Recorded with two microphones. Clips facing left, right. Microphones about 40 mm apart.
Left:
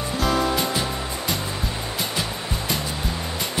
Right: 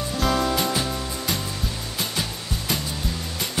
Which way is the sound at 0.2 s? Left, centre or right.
Centre.